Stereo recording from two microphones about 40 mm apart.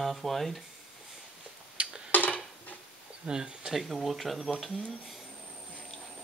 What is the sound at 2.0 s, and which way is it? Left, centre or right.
Dishes, left.